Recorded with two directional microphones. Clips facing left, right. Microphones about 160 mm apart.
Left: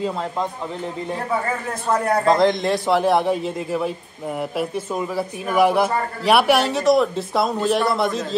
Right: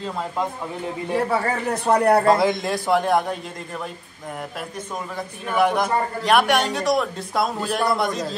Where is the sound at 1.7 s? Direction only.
65° right (ahead or behind).